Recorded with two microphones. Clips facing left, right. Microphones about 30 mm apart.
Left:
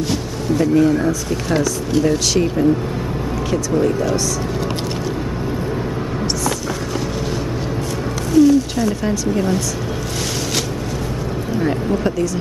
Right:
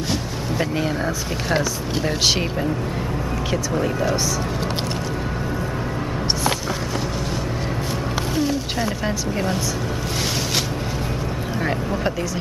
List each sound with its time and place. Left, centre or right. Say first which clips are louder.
0.6 s speech: left 9 dB; right
3.7 s speech: left 5 dB; centre
8.4 s speech: left 12 dB; right
11.6 s speech: left 4 dB; centre